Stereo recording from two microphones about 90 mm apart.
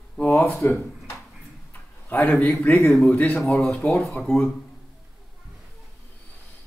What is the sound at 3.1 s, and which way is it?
Speech, 15° left (ahead or behind).